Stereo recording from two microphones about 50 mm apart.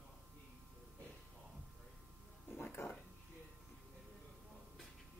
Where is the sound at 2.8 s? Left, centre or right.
Left.